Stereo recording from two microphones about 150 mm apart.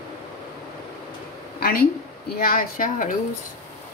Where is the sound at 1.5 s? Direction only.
80° left.